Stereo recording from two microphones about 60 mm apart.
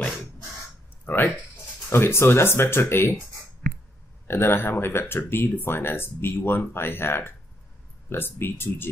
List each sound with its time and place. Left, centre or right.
1.1 s speech: left
1.9 s speech: left
4.3 s speech: left